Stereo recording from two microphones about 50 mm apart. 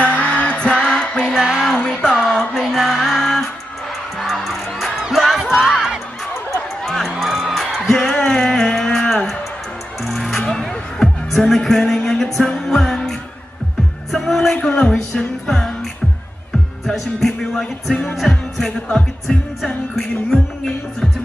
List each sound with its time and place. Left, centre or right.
0.0 s music: left
1.4 s music: centre
1.7 s a sound: centre
2.6 s music: centre
5.4 s music: centre
6.8 s music: centre
14.1 s music: centre
16.8 s music: centre
20.0 s music: centre